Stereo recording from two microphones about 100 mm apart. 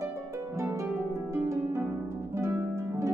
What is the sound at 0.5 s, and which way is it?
Harp, 30° right (ahead or behind).